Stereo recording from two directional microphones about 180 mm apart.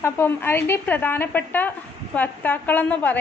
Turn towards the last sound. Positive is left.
turn(degrees=10)  # may be behind; listen again after turning